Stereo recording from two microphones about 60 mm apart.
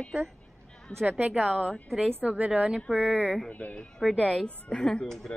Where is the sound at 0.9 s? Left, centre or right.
Left.